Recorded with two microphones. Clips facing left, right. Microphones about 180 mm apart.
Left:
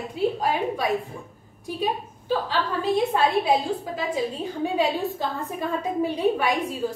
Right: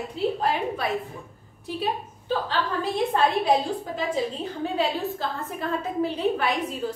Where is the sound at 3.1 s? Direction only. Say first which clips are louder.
Even; 5° left (ahead or behind).